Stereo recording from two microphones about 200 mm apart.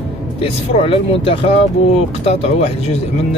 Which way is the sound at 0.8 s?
25° left (ahead or behind).